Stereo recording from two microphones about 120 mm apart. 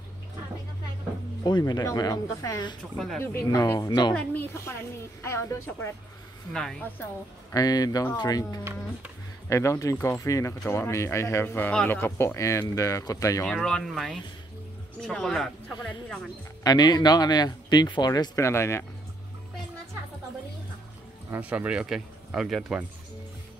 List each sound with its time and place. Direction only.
1.4 s speech: 35° left (ahead or behind)
3.2 s speech: 20° left (ahead or behind)
4.1 s speech: 10° left (ahead or behind)
6.5 s speech: 5° left (ahead or behind)
7.5 s speech: 30° left (ahead or behind)
13.5 s speech: 5° left (ahead or behind)
16.6 s speech: 35° left (ahead or behind)
21.4 s speech: 10° right (ahead or behind)